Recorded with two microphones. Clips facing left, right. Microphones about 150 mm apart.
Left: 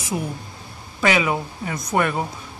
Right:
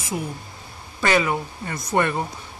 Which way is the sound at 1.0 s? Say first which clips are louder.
Left 1 dB; 10° left (ahead or behind).